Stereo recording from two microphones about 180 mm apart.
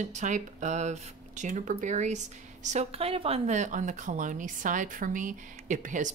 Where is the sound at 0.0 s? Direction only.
40° right (ahead or behind).